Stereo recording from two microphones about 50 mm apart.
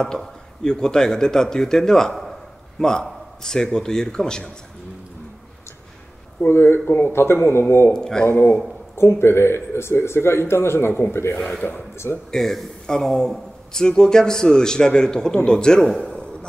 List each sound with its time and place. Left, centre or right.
0.0 s a man's voice: centre
6.4 s speech: left
7.9 s a man's voice: centre
8.3 s speech: left
8.9 s a man's voice: left
10.9 s speech: left
12.3 s a man's voice: centre